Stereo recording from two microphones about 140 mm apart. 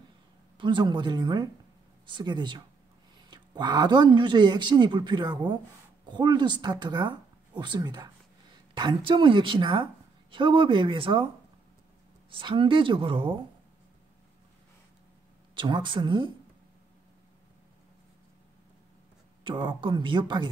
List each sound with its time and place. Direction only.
0.6 s speech: 35° right (ahead or behind)
12.3 s speech: 35° right (ahead or behind)
15.5 s speech: 35° right (ahead or behind)
19.4 s speech: 35° right (ahead or behind)